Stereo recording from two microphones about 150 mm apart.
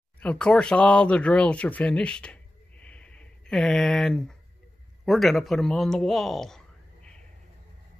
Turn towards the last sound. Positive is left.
turn(degrees=5)  # may be behind; listen again after turning